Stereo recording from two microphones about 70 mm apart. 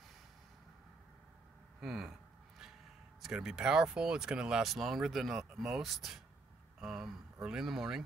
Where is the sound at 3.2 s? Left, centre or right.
Centre.